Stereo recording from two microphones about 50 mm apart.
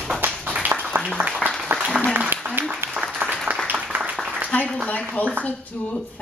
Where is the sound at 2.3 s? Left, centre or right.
Right.